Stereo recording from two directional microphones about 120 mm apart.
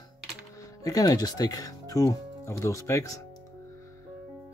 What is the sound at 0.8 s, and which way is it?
Speech, 30° left (ahead or behind).